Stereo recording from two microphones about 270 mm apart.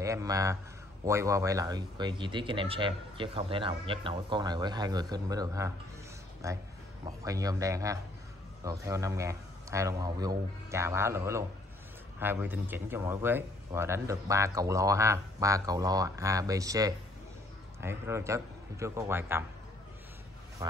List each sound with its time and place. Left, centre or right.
0.0 s speech: centre